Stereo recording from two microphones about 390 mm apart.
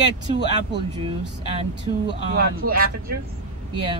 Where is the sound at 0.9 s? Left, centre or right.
Centre.